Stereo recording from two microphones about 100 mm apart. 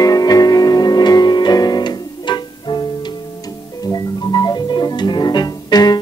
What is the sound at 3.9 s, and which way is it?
Music, 40° left (ahead or behind).